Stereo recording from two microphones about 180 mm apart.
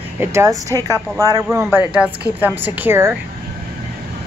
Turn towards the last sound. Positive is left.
turn(degrees=-10)  # may be behind; listen again after turning